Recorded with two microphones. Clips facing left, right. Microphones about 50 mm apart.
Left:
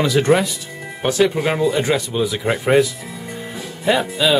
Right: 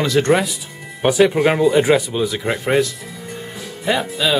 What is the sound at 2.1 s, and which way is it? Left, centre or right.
Speech, centre.